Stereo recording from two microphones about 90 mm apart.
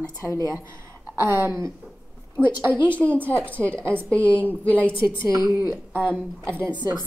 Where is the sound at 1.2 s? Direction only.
25° right (ahead or behind).